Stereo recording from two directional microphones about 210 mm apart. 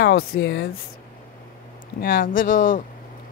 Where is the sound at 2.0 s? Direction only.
40° left (ahead or behind).